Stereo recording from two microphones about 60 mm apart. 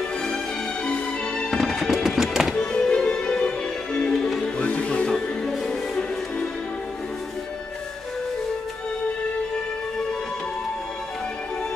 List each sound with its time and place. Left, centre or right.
0.8 s music: centre
1.5 s music: centre
2.5 s music: centre